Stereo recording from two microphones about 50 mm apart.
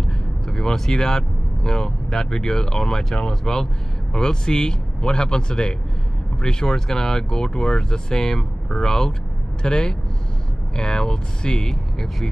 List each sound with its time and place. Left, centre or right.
0.0 s speech: centre